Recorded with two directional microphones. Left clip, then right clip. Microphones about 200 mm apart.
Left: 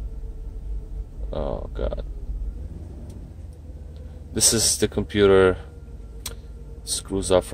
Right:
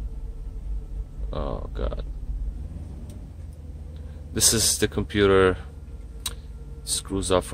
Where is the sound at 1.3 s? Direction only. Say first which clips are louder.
Left 3 dB; 5° right (ahead or behind).